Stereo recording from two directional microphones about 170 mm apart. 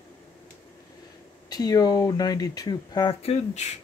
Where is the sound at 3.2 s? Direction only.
40° left (ahead or behind).